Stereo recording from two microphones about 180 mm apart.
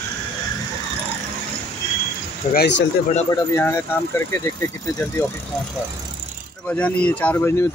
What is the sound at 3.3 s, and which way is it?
Speech, 15° left (ahead or behind).